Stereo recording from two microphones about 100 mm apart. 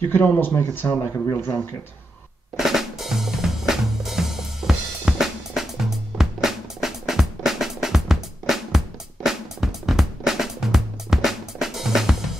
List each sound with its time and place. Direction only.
0.1 s speech: 20° left (ahead or behind)
2.5 s drum: 5° right (ahead or behind)
6.1 s music: 5° right (ahead or behind)